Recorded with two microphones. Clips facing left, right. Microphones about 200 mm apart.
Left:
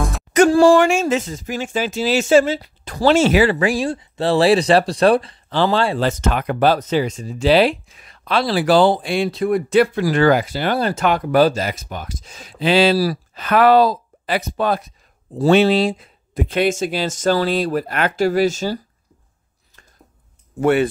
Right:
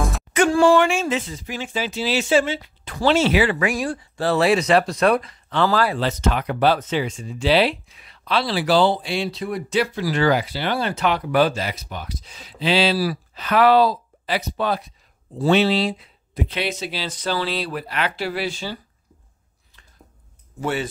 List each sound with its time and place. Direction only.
0.3 s speech: 40° left (ahead or behind)
3.5 s speech: 30° left (ahead or behind)
5.9 s speech: 45° left (ahead or behind)
20.6 s speech: 55° left (ahead or behind)